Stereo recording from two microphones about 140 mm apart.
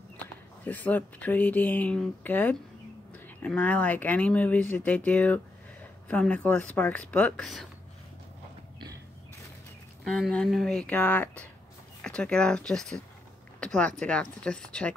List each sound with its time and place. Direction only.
0.7 s speech: 10° left (ahead or behind)
10.0 s speech: centre (ahead or behind)